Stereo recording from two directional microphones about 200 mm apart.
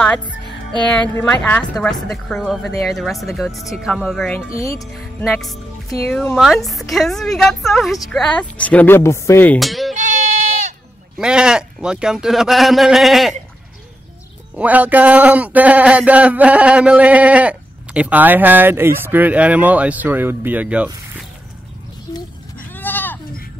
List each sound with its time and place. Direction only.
1.2 s a man's voice: 10° left (ahead or behind)
4.6 s speech: 15° left (ahead or behind)
4.9 s music: centre (ahead or behind)
6.0 s a man's voice: 5° left (ahead or behind)
9.9 s bleat: 40° right (ahead or behind)
11.1 s a man's voice: 5° right (ahead or behind)
14.6 s speech: 10° right (ahead or behind)
22.7 s sheep: 10° left (ahead or behind)